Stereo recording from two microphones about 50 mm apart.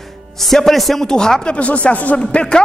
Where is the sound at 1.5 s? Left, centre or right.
Left.